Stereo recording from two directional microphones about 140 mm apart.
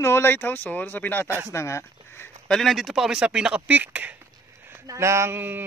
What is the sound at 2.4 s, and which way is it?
Speech, centre (ahead or behind).